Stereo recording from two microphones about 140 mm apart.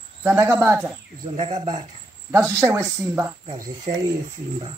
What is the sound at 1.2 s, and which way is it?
Speech, 55° right (ahead or behind).